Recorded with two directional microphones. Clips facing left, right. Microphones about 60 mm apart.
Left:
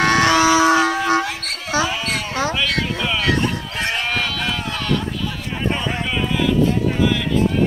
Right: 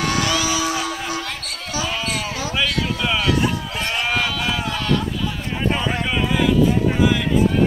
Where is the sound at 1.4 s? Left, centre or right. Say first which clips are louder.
Left 6 dB; left.